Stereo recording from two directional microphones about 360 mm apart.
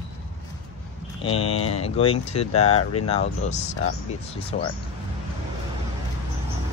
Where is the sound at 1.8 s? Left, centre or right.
Centre.